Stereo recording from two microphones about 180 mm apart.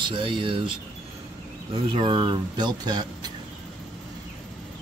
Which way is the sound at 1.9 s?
25° right (ahead or behind).